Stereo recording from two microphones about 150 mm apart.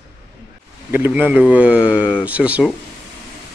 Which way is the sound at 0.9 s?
15° right (ahead or behind).